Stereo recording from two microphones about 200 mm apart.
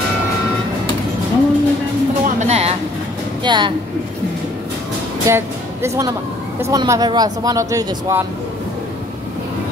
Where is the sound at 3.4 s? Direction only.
25° right (ahead or behind).